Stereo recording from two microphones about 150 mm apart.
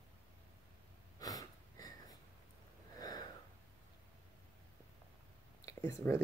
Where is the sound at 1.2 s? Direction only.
25° left (ahead or behind).